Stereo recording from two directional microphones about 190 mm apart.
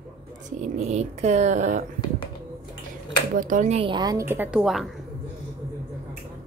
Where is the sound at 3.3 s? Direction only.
45° right (ahead or behind).